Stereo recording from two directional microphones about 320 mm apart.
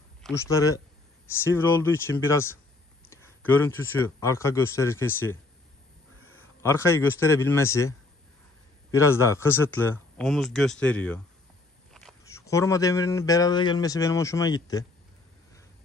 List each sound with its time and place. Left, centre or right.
0.2 s speech: centre
6.6 s speech: centre
8.9 s speech: centre